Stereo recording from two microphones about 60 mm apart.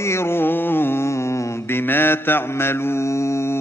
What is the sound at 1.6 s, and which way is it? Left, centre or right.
Mantra, left.